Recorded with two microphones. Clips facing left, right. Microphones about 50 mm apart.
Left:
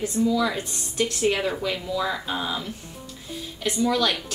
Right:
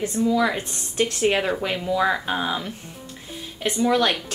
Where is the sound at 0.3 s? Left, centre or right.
Right.